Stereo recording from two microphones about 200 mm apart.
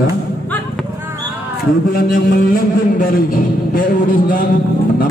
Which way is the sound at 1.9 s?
45° left (ahead or behind).